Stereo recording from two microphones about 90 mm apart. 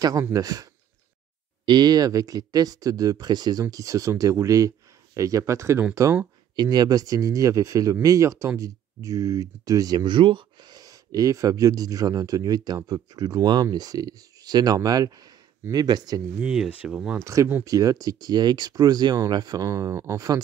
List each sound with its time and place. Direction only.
0.2 s speech: 40° right (ahead or behind)
1.7 s speech: 50° right (ahead or behind)
3.7 s speech: 35° right (ahead or behind)
6.5 s speech: 50° right (ahead or behind)
16.3 s speech: 10° right (ahead or behind)
17.2 s speech: 35° right (ahead or behind); by 19.6 s 50° right (ahead or behind)
19.6 s speech: 35° right (ahead or behind)